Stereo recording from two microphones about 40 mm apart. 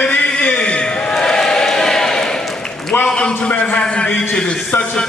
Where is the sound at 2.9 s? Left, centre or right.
Left.